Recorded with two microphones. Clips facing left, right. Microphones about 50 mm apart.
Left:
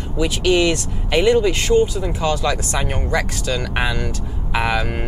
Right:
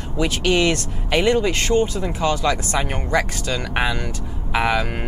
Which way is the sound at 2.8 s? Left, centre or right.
Centre.